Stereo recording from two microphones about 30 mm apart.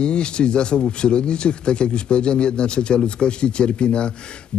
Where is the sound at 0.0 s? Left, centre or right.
Left.